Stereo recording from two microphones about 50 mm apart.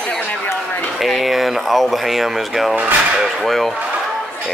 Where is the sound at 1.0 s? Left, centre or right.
Centre.